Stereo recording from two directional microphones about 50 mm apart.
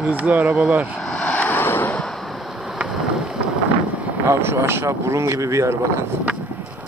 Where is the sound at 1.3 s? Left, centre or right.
Left.